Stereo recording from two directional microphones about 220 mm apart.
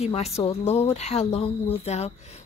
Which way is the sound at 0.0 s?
25° left (ahead or behind).